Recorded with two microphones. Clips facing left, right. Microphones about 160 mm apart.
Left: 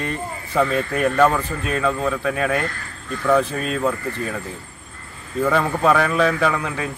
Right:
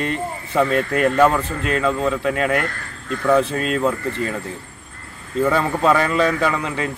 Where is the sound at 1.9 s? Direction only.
20° right (ahead or behind).